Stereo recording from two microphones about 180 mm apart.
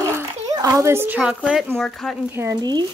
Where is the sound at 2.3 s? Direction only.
20° right (ahead or behind).